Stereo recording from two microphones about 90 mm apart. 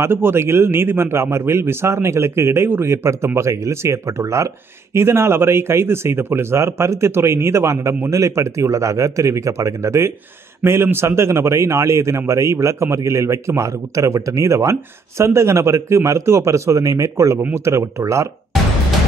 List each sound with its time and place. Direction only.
0.0 s a man's voice: 25° right (ahead or behind)
17.4 s a man's voice: 20° right (ahead or behind)
17.7 s a man's voice: 35° right (ahead or behind)